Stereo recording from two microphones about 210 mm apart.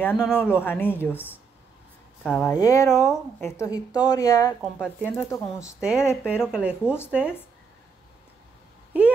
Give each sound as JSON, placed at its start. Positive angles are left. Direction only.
{"t": 0.0, "sound": "speech", "side_deg": 10}
{"t": 4.6, "sound": "speech", "side_deg": 0}
{"t": 6.4, "sound": "speech", "side_deg": -5}